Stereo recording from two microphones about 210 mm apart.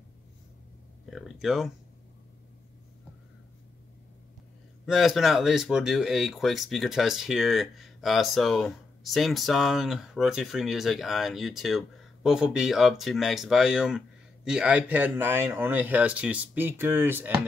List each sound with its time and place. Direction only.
1.1 s speech: centre (ahead or behind)
4.8 s speech: centre (ahead or behind)